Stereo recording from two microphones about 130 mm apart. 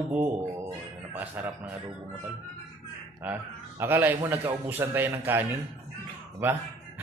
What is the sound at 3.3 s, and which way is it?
A man's voice, 10° right (ahead or behind).